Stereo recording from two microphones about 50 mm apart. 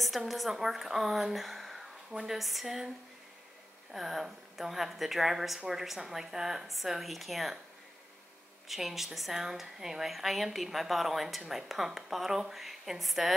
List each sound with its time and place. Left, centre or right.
0.0 s a woman's voice: centre
3.9 s a woman's voice: centre
8.6 s a woman's voice: centre